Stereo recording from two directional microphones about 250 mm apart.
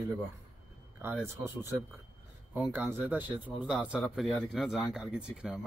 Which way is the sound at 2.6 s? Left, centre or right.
Centre.